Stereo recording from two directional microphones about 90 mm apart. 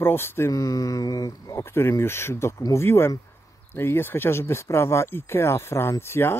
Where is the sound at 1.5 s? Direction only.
25° left (ahead or behind).